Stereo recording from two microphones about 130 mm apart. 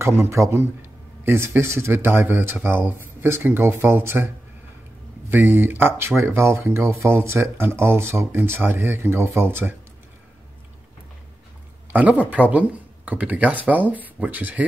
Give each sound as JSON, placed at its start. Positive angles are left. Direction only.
{"t": 0.0, "sound": "a man's voice", "side_deg": -20}
{"t": 5.3, "sound": "speech", "side_deg": -15}
{"t": 11.9, "sound": "speech", "side_deg": -10}